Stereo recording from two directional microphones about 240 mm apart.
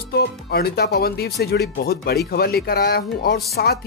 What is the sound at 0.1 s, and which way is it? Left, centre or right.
Speech, left.